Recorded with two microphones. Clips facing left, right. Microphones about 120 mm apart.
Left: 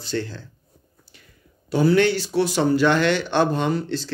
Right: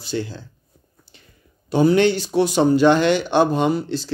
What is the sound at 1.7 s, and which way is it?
Speech, 20° right (ahead or behind).